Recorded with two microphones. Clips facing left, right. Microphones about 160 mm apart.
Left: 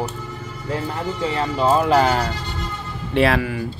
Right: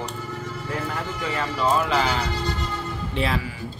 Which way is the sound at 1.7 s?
45° left (ahead or behind).